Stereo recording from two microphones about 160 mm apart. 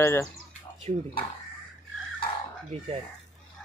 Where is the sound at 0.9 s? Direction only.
45° right (ahead or behind).